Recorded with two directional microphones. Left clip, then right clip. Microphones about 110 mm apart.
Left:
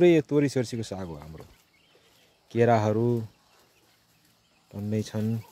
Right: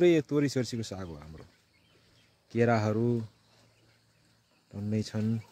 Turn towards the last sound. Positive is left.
turn(degrees=30)  # may be behind; listen again after turning